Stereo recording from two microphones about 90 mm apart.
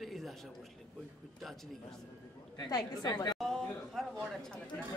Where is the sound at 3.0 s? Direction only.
45° left (ahead or behind).